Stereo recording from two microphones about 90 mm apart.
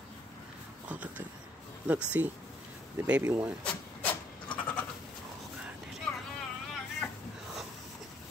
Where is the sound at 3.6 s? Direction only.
15° left (ahead or behind).